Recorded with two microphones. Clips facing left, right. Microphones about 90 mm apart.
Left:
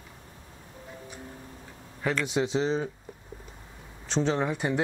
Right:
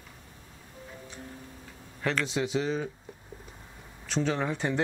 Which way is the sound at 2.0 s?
20° left (ahead or behind).